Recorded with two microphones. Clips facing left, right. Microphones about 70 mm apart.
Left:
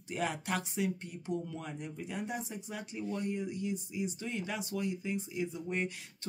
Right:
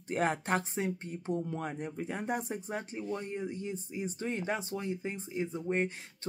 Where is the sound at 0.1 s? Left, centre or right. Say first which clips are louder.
Right 5 dB; right.